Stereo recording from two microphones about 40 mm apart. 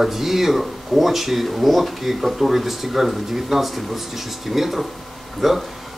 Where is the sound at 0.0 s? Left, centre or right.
Centre.